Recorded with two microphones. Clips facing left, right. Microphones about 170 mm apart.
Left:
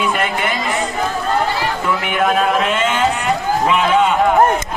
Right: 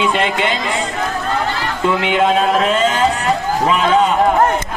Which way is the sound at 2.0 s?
25° right (ahead or behind).